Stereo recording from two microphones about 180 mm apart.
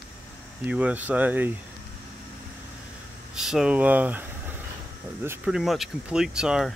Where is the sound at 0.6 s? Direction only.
10° right (ahead or behind).